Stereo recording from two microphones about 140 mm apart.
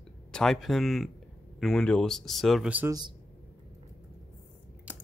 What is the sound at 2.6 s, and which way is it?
Speech, 10° right (ahead or behind).